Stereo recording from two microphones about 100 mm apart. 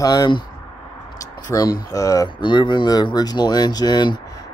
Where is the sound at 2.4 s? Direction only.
50° left (ahead or behind).